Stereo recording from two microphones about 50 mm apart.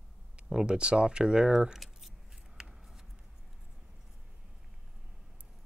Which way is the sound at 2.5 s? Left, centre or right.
Centre.